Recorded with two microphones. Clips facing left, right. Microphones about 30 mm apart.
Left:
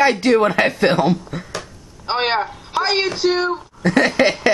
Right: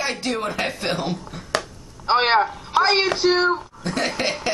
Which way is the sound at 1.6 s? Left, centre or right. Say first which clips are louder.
Right 1 dB; centre.